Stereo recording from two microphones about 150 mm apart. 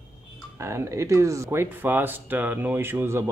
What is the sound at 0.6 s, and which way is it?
Speech, 20° right (ahead or behind).